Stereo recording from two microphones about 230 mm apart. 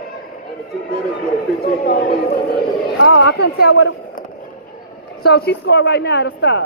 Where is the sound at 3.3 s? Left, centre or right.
Left.